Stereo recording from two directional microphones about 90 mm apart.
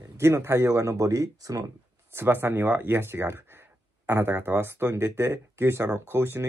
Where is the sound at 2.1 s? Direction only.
25° right (ahead or behind).